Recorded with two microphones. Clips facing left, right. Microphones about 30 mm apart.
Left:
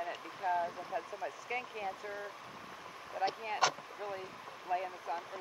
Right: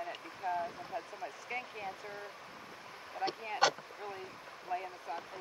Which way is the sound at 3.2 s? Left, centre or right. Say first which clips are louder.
Left 2 dB; right.